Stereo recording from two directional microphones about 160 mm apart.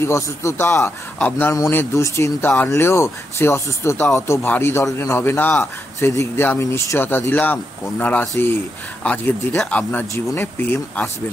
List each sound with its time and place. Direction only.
0.0 s speech: 20° left (ahead or behind)